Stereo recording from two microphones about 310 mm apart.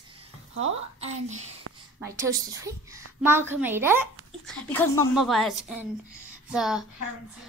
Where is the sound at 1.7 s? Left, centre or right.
Right.